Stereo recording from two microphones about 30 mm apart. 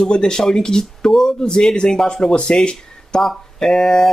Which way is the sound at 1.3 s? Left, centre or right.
Left.